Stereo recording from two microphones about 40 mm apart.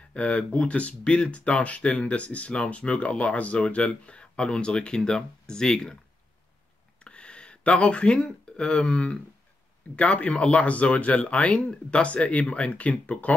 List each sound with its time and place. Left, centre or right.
0.1 s speech: left; by 5.9 s centre
7.0 s speech: left